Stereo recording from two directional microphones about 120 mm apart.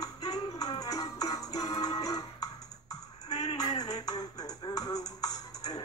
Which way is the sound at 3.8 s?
30° left (ahead or behind).